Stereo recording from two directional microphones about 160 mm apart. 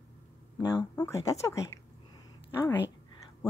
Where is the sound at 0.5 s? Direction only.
15° left (ahead or behind).